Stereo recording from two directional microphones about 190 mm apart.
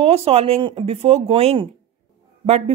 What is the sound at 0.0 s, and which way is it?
A woman's voice, 30° right (ahead or behind).